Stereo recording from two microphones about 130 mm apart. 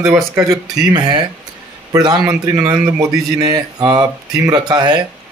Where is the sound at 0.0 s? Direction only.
20° right (ahead or behind).